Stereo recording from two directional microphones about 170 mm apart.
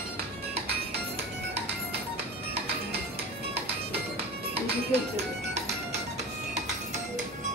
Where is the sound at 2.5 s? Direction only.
70° right (ahead or behind).